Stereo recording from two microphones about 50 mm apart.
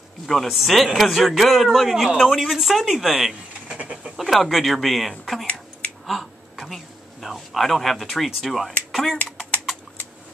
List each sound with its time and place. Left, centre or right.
0.3 s speech: centre
3.6 s bird: right
4.2 s speech: centre